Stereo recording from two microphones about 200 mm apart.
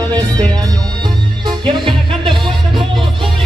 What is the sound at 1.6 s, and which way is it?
Music, 25° right (ahead or behind).